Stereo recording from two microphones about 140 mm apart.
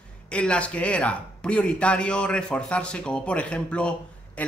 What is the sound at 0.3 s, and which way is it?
Speech, 10° left (ahead or behind).